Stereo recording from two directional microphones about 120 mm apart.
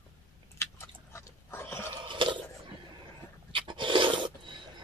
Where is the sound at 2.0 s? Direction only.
45° right (ahead or behind).